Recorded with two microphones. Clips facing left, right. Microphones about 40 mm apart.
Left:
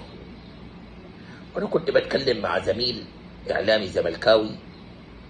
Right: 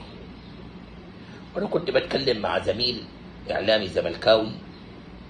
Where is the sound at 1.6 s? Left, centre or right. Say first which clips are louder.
Left 2 dB; right.